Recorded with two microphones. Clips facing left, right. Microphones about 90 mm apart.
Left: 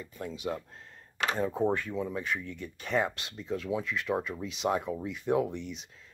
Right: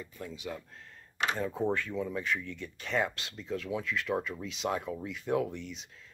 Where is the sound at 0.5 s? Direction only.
35° left (ahead or behind).